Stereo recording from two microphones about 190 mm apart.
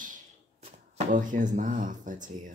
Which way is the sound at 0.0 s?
45° right (ahead or behind).